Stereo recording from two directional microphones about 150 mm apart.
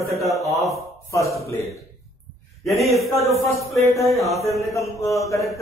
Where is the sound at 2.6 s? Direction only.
Centre (ahead or behind).